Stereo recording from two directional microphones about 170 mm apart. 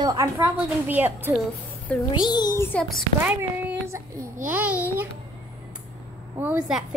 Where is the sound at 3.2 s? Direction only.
10° right (ahead or behind).